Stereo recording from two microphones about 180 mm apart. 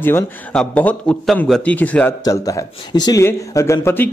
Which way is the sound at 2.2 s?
20° left (ahead or behind).